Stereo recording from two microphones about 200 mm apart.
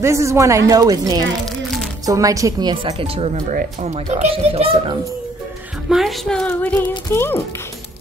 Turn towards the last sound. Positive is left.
turn(degrees=10)  # may be behind; listen again after turning